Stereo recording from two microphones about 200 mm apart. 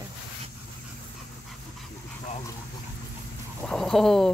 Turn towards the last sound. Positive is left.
turn(degrees=0)  # may be behind; listen again after turning